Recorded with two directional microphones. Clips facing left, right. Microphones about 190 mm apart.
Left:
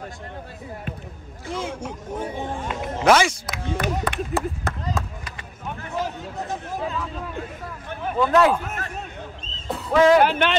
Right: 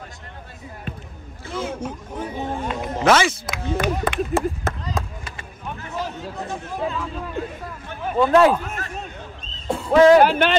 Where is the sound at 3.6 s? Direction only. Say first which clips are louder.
Right 3 dB; 25° right (ahead or behind).